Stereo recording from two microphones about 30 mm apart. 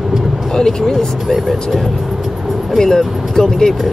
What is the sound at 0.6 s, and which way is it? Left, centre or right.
Speech, centre.